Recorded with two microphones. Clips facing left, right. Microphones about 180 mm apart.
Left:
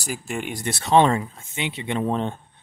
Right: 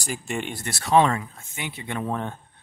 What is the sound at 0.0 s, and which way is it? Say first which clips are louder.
Speech: left 1 dB; 5° left (ahead or behind).